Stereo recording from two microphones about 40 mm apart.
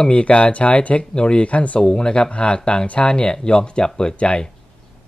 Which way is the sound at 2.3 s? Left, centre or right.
Left.